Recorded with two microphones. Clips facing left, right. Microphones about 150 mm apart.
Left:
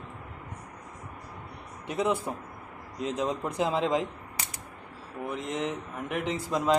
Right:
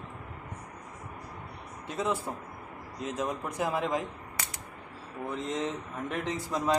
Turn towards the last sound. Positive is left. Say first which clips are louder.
# left 3 dB
turn(degrees=15)  # may be behind; listen again after turning